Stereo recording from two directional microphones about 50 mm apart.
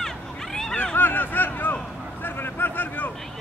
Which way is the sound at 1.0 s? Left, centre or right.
Left.